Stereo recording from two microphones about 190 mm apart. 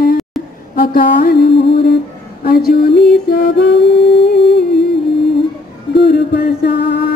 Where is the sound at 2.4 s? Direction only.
55° left (ahead or behind).